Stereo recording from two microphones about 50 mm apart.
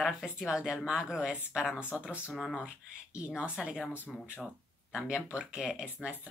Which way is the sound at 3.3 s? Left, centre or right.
Right.